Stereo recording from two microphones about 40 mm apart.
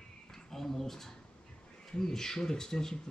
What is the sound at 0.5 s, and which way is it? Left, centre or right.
Speech, centre.